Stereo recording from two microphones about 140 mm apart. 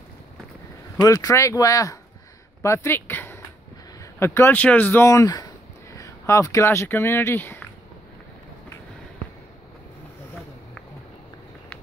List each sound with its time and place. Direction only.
0.9 s speech: 25° left (ahead or behind)